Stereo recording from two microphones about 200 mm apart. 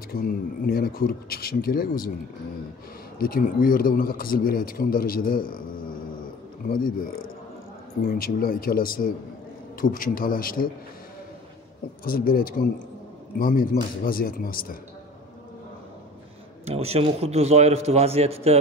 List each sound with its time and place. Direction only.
0.1 s a man's voice: 45° left (ahead or behind)
3.2 s a man's voice: 45° left (ahead or behind)
6.7 s a man's voice: 45° left (ahead or behind)
12.0 s a man's voice: 45° left (ahead or behind)
16.6 s a man's voice: 30° right (ahead or behind)